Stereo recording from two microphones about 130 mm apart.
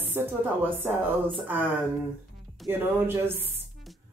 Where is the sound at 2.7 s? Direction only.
15° right (ahead or behind).